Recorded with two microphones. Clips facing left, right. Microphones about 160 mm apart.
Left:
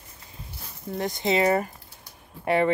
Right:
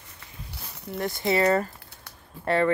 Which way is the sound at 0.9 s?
20° left (ahead or behind).